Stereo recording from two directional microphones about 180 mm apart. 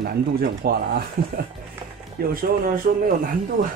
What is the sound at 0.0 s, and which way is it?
Speech, 55° right (ahead or behind).